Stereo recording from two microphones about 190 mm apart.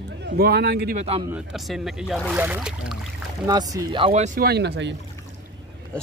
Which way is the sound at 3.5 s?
20° right (ahead or behind).